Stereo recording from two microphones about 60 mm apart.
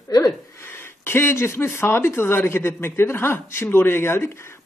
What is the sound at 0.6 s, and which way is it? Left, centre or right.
Speech, left.